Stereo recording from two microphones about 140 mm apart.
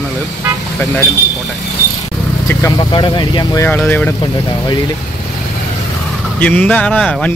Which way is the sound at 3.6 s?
15° left (ahead or behind).